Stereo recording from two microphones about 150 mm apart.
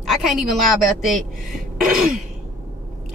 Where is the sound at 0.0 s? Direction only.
Centre (ahead or behind).